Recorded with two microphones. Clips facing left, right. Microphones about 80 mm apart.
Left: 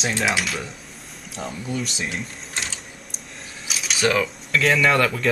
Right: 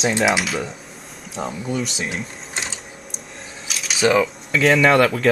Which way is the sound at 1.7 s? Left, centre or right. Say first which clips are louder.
Right 1 dB; centre.